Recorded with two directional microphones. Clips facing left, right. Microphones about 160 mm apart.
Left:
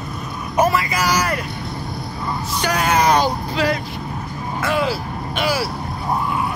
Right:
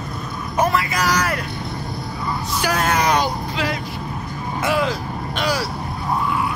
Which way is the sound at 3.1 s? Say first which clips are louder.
Left 2 dB; 35° left (ahead or behind).